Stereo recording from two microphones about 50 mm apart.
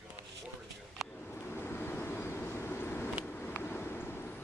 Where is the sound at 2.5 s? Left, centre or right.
Left.